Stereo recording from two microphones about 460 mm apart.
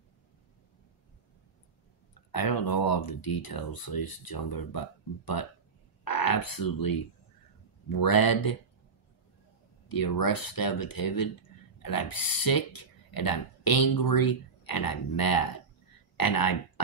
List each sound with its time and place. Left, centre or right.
2.3 s speech: left
9.8 s speech: left